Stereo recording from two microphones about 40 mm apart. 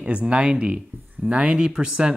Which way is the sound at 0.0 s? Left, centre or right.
Right.